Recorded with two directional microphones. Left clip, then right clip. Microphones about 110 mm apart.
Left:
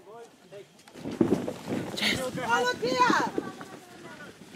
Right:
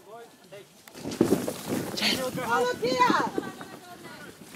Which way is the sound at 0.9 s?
45° right (ahead or behind).